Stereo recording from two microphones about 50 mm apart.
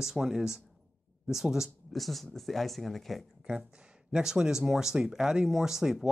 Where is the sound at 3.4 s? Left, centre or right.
Centre.